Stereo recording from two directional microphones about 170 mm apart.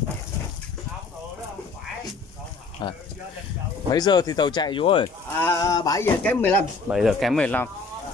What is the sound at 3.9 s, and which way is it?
Speech, 25° left (ahead or behind).